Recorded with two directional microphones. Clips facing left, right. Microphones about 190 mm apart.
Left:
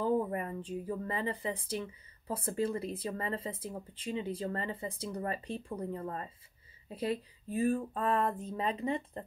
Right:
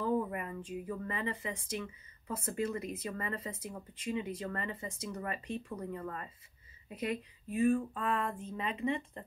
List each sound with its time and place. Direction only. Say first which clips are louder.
0.0 s speech: left 2 dB; 30° left (ahead or behind)